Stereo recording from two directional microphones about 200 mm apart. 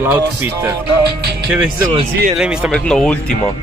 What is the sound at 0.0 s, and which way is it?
Speech, 10° right (ahead or behind).